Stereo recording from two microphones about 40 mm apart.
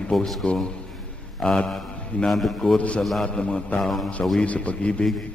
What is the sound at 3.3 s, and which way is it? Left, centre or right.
Speech, left.